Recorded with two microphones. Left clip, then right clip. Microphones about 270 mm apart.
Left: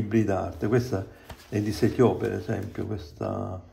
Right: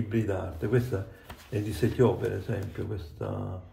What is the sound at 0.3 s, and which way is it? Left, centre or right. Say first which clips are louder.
Speech: left 4 dB; left.